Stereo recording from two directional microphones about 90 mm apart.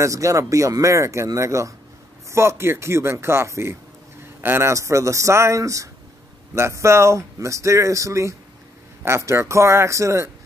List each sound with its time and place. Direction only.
0.0 s speech: 35° right (ahead or behind)